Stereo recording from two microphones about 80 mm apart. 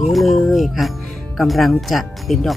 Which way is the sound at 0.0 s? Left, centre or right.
Centre.